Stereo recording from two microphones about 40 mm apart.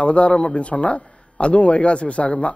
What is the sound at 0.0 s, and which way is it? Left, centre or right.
A man's voice, left.